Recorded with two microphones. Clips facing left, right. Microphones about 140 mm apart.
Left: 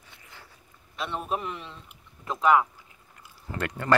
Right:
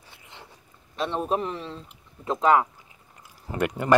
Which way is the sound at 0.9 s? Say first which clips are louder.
Right 5 dB; 35° right (ahead or behind).